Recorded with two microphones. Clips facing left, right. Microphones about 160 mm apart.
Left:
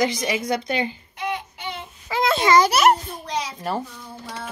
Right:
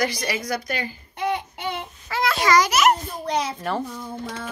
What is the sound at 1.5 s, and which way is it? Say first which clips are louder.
Child singing: right 4 dB; 50° right (ahead or behind).